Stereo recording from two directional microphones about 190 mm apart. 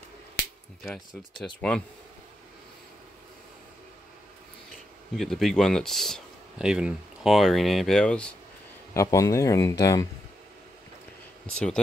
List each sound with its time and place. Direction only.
0.8 s speech: 5° left (ahead or behind)
5.1 s speech: centre (ahead or behind)
8.9 s speech: 15° left (ahead or behind)
11.4 s speech: 5° left (ahead or behind)